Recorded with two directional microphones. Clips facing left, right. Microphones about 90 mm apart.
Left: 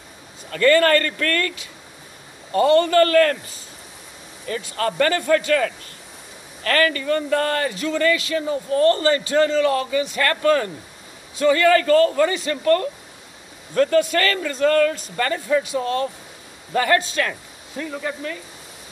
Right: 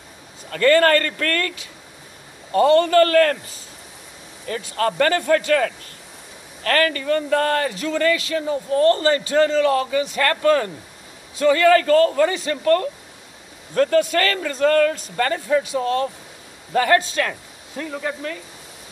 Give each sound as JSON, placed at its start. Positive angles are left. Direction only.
{"t": 0.5, "sound": "a man's voice", "side_deg": -40}
{"t": 2.5, "sound": "a man's voice", "side_deg": -35}
{"t": 4.5, "sound": "a man's voice", "side_deg": -40}
{"t": 6.6, "sound": "a man's voice", "side_deg": -40}
{"t": 8.6, "sound": "a man's voice", "side_deg": -30}
{"t": 13.7, "sound": "a man's voice", "side_deg": -40}